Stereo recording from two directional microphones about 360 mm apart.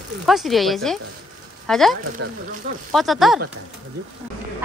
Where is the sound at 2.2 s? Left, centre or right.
Right.